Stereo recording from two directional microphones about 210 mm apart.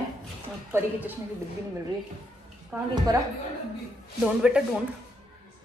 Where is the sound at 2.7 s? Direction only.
10° right (ahead or behind).